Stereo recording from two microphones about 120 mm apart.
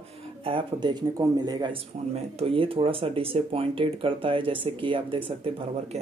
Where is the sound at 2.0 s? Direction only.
65° right (ahead or behind).